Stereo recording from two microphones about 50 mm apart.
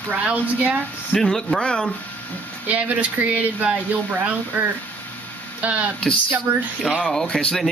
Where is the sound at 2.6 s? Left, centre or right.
Right.